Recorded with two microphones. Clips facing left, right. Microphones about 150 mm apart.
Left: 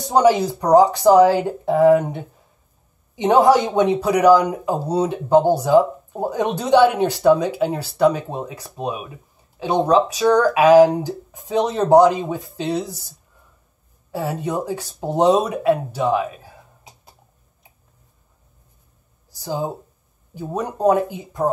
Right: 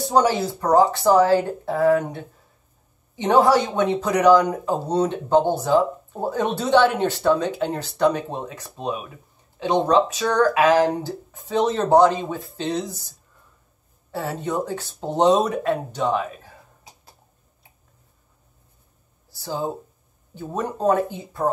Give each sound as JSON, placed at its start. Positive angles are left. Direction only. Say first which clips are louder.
{"t": 0.1, "sound": "speech", "louder": "left 5 dB", "side_deg": 15}
{"t": 14.1, "sound": "speech", "louder": "left 2 dB", "side_deg": 10}
{"t": 19.3, "sound": "speech", "louder": "left 2 dB", "side_deg": 15}